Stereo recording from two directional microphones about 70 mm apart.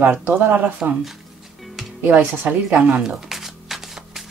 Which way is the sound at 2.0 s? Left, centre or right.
Right.